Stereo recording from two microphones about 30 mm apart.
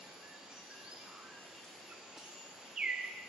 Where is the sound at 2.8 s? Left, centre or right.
Right.